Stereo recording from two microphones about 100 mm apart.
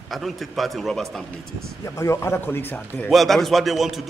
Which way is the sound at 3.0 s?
Centre (ahead or behind).